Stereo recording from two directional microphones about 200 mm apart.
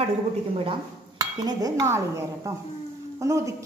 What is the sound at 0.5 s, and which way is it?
A woman's voice, 25° right (ahead or behind).